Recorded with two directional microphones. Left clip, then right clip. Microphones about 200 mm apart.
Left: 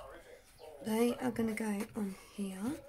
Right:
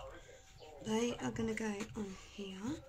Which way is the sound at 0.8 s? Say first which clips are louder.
Left 4 dB; 45° left (ahead or behind).